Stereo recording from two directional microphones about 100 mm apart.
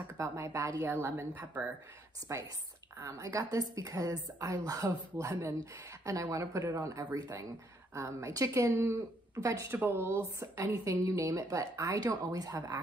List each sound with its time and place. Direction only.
0.2 s a woman's voice: 30° right (ahead or behind)
1.0 s a woman's voice: 20° right (ahead or behind)
2.3 s a woman's voice: 30° right (ahead or behind)
7.9 s a woman's voice: 30° right (ahead or behind)
8.7 s a woman's voice: 20° right (ahead or behind); by 12.7 s 35° right (ahead or behind)